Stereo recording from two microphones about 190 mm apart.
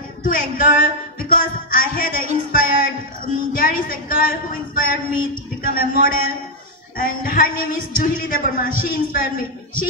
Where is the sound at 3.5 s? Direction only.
50° left (ahead or behind).